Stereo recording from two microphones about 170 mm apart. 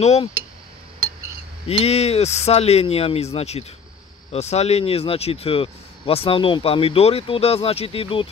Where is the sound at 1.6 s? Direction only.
35° left (ahead or behind).